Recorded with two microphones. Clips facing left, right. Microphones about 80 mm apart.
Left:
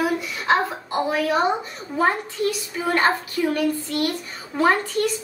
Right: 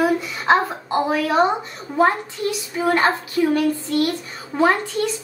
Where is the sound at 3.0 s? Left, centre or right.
Centre.